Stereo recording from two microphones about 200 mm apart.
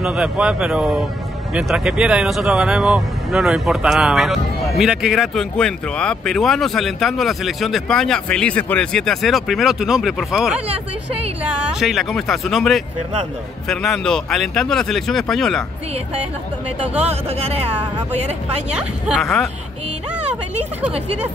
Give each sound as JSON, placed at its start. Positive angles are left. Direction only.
{"t": 0.0, "sound": "speech", "side_deg": -5}
{"t": 11.8, "sound": "speech", "side_deg": 0}
{"t": 17.0, "sound": "speech", "side_deg": -30}
{"t": 18.8, "sound": "speech", "side_deg": 0}